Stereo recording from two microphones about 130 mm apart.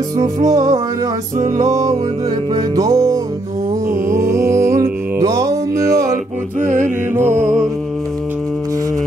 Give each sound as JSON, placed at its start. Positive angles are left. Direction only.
{"t": 2.5, "sound": "music", "side_deg": -30}
{"t": 6.6, "sound": "mantra", "side_deg": -80}
{"t": 7.3, "sound": "music", "side_deg": -70}